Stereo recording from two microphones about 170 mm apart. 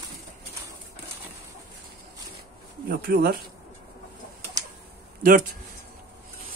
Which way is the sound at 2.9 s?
65° right (ahead or behind).